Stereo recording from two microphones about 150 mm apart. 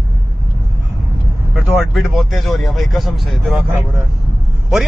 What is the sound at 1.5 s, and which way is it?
A man's voice, centre (ahead or behind).